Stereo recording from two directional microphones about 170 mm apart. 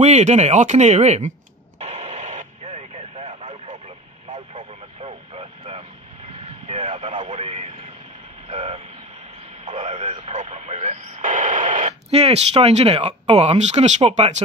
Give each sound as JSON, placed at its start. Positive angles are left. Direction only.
{"t": 0.0, "sound": "speech", "side_deg": -40}
{"t": 1.8, "sound": "radio", "side_deg": -45}
{"t": 4.3, "sound": "vehicle", "side_deg": -40}
{"t": 6.7, "sound": "radio", "side_deg": -35}
{"t": 8.5, "sound": "vehicle", "side_deg": -40}
{"t": 9.7, "sound": "radio", "side_deg": -45}
{"t": 10.9, "sound": "speech", "side_deg": -50}